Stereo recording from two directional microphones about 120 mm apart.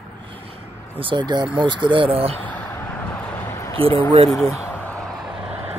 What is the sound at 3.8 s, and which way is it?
Speech, 50° right (ahead or behind).